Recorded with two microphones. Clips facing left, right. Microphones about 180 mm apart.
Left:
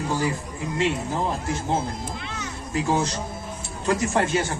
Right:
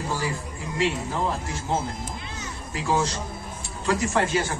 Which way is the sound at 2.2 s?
65° left (ahead or behind).